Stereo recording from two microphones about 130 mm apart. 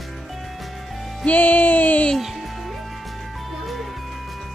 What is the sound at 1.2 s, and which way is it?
Music, 10° left (ahead or behind).